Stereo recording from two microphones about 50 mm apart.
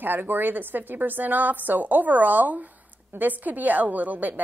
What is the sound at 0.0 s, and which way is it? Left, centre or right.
A woman's voice, right.